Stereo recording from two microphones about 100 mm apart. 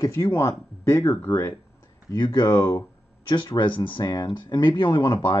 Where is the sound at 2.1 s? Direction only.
45° left (ahead or behind).